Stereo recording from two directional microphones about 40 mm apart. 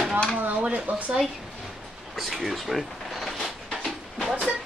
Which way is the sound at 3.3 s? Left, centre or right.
Centre.